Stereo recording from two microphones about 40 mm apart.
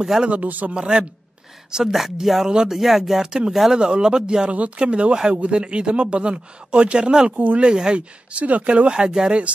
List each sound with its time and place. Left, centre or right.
0.3 s speech: right
0.7 s speech: right
1.9 s speech: centre
2.4 s speech: centre
2.7 s speech: centre
3.2 s speech: centre
4.5 s speech: right
7.3 s speech: right
7.6 s speech: right
8.3 s speech: right
9.0 s speech: centre